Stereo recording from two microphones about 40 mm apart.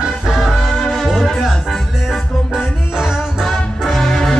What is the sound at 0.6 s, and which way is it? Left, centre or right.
Music, centre.